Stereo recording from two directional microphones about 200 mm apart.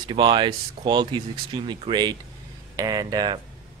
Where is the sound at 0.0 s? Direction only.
25° right (ahead or behind).